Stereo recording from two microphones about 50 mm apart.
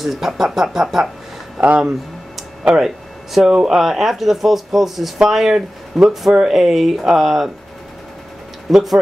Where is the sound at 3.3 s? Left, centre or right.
Centre.